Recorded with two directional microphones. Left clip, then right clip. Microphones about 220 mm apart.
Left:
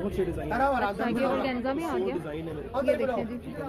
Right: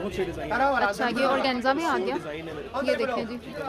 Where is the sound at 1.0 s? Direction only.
25° right (ahead or behind).